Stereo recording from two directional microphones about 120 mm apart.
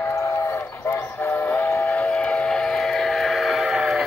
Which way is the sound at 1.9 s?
5° left (ahead or behind).